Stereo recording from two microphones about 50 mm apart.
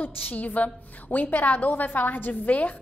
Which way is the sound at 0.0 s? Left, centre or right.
Left.